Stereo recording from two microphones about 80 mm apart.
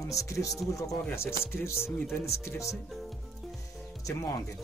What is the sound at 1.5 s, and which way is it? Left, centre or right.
Speech, left.